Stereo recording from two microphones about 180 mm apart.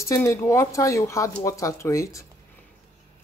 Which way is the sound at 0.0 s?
15° left (ahead or behind).